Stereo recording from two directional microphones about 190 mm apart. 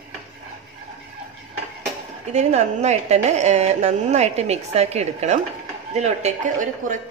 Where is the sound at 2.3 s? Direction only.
35° right (ahead or behind).